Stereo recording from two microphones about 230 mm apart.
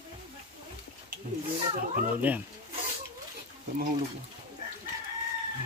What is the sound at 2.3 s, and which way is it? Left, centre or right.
Speech, centre.